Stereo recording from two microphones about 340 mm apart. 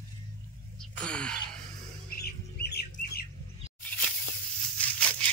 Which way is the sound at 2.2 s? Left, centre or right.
Left.